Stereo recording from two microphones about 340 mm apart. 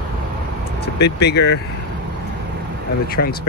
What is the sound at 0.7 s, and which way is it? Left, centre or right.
Speech, left.